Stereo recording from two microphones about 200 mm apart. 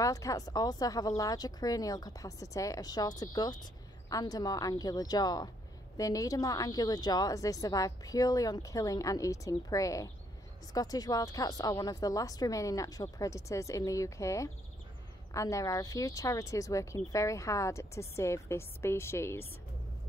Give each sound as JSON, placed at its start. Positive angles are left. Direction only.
{"t": 0.0, "sound": "a woman's voice", "side_deg": 15}